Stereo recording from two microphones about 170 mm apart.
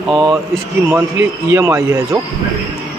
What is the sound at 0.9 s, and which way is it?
Speech, 15° right (ahead or behind).